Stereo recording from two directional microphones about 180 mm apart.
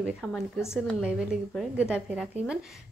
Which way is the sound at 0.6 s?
15° left (ahead or behind).